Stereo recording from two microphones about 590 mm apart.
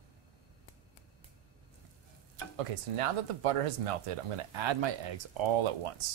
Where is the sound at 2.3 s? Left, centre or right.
Right.